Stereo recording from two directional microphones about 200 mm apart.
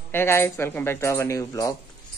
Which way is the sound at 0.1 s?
10° left (ahead or behind).